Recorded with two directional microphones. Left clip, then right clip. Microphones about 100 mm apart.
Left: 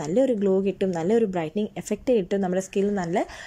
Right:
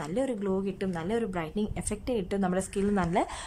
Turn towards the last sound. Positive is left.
turn(degrees=15)  # may be behind; listen again after turning